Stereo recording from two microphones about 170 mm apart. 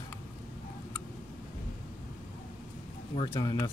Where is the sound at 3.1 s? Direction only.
25° left (ahead or behind).